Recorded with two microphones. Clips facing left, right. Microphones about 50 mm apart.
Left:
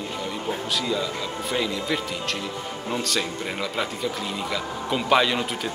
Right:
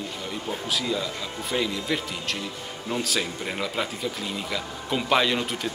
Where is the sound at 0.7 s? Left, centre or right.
Centre.